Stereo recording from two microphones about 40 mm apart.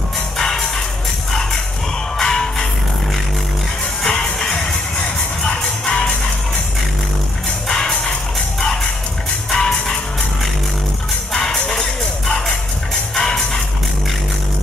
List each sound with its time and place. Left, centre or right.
0.4 s music: centre
2.1 s music: centre
4.0 s music: centre
7.6 s music: centre
9.5 s music: centre
11.3 s music: centre
13.1 s music: centre